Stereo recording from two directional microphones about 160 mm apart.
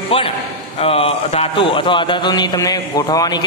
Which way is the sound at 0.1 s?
35° left (ahead or behind).